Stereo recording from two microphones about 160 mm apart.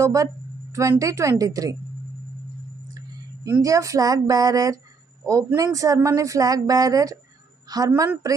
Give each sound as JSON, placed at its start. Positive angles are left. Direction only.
{"t": 0.0, "sound": "a woman's voice", "side_deg": -20}
{"t": 3.4, "sound": "speech", "side_deg": -20}